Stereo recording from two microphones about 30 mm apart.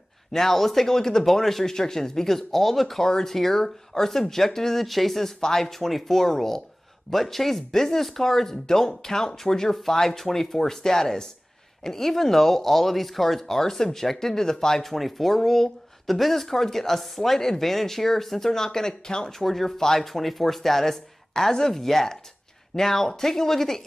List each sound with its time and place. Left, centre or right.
0.3 s speech: centre
3.0 s speech: centre
15.0 s speech: centre
19.3 s speech: centre